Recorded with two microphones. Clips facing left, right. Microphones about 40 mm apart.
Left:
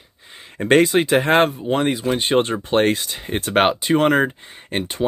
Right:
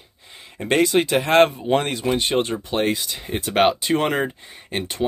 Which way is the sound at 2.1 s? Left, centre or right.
Left.